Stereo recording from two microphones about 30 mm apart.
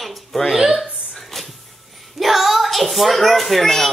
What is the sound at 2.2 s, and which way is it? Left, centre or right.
Speech, centre.